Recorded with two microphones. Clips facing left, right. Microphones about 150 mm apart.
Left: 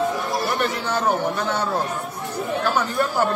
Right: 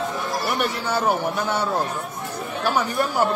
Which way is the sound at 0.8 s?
10° right (ahead or behind).